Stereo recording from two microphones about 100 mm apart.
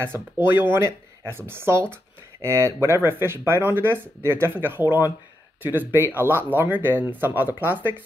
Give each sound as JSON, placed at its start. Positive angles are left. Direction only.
{"t": 0.1, "sound": "speech", "side_deg": -20}